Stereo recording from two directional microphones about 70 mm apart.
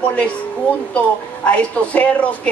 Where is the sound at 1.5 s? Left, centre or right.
Centre.